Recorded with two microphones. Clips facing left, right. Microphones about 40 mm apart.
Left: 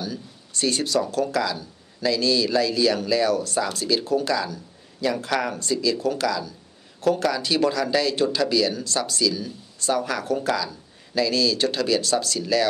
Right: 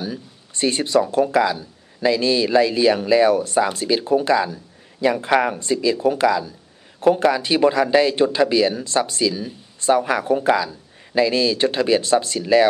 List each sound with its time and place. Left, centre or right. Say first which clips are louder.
0.0 s speech: right 3 dB; right